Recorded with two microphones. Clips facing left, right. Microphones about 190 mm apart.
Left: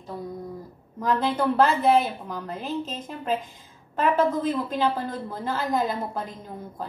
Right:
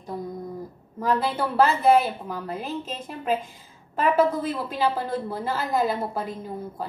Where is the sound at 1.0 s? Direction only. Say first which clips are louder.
Left 1 dB; 5° right (ahead or behind).